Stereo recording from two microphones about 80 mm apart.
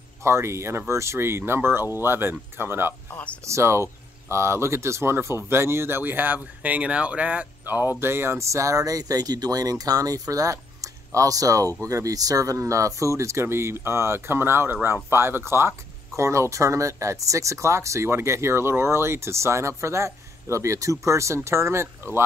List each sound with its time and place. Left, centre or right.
0.2 s speech: right